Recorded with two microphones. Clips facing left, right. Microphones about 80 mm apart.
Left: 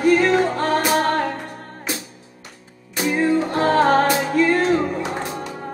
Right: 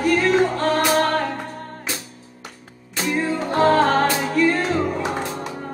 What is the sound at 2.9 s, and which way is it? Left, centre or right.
Music, centre.